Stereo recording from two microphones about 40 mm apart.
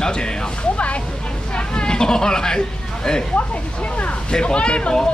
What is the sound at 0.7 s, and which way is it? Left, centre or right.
Speech, left.